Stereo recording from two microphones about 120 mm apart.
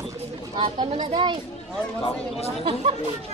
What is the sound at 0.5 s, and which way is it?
Speech, 45° right (ahead or behind).